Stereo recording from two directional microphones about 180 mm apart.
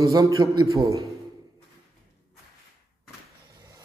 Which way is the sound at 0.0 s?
20° right (ahead or behind).